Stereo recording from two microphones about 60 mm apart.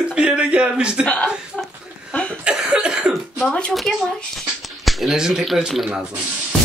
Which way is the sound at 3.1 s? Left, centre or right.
Centre.